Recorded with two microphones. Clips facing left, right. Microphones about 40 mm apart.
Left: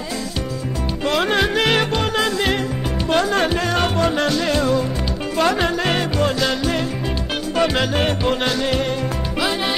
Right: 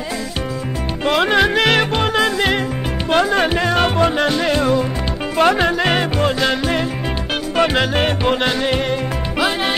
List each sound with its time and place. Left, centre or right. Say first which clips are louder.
1.0 s music: right 4 dB; right